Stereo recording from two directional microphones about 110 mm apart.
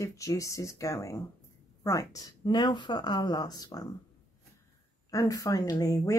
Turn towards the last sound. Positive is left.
turn(degrees=30)  # may be behind; listen again after turning